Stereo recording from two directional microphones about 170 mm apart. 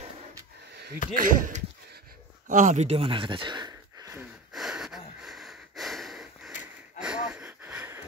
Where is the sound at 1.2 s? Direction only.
50° right (ahead or behind).